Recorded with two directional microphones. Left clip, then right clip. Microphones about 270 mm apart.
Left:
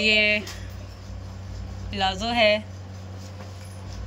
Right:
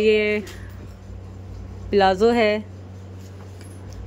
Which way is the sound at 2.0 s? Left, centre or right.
Right.